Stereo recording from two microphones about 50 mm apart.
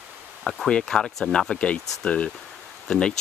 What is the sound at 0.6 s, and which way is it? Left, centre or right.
Speech, centre.